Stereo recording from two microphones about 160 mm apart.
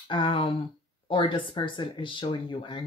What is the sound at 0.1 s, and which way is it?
Speech, 35° left (ahead or behind).